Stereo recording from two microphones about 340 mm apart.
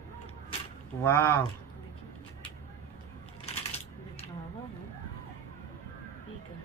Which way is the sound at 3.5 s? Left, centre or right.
Centre.